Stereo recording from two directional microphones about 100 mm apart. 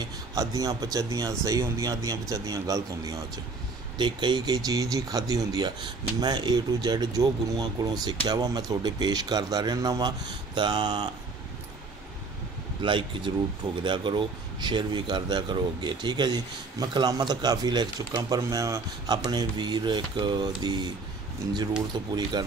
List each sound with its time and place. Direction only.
0.0 s a man's voice: 35° right (ahead or behind)
4.0 s a man's voice: 50° right (ahead or behind)
12.8 s a man's voice: 55° right (ahead or behind)